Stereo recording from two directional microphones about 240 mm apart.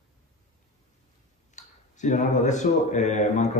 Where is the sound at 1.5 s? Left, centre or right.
Left.